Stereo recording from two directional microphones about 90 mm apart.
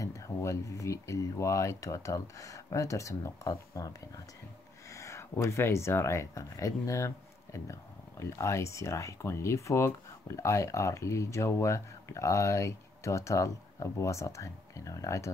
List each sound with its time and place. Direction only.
0.0 s speech: 35° left (ahead or behind)
4.9 s speech: 35° left (ahead or behind)
8.2 s speech: 35° left (ahead or behind)